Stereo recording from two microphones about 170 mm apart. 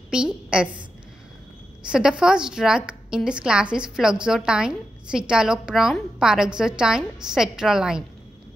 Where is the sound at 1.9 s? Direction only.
5° right (ahead or behind).